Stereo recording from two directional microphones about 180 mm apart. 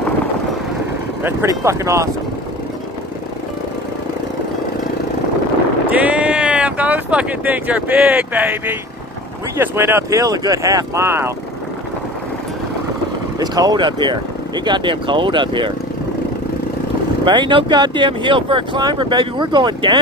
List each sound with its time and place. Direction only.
1.2 s speech: 15° right (ahead or behind)
5.9 s speech: 10° right (ahead or behind)
13.4 s speech: 20° right (ahead or behind)
17.2 s speech: 25° right (ahead or behind)